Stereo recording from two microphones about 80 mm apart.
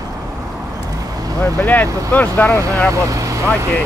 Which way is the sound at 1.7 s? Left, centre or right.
Left.